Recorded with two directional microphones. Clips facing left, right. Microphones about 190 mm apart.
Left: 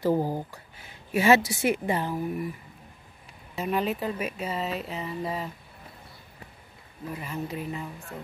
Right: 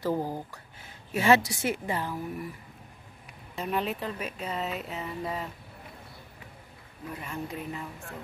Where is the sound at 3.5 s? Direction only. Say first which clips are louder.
Left 3 dB; centre (ahead or behind).